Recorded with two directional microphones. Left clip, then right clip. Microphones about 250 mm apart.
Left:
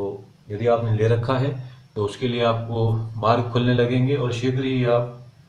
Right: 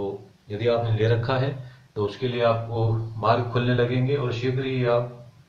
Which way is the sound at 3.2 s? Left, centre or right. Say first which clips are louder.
Left 2 dB; left.